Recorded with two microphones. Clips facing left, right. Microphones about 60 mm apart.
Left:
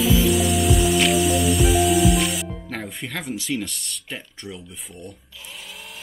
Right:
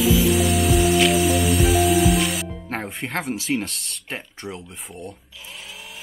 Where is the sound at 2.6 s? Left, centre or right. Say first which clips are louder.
Right 3 dB; right.